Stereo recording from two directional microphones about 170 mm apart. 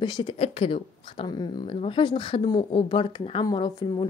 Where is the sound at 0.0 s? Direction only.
30° left (ahead or behind).